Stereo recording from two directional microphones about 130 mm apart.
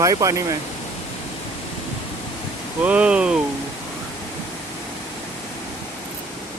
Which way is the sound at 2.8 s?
10° right (ahead or behind).